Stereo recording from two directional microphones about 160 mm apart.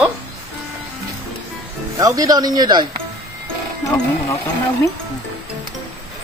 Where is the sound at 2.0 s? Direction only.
20° right (ahead or behind).